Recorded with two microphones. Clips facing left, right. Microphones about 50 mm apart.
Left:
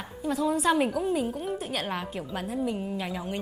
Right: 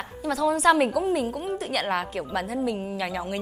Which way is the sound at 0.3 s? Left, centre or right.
Right.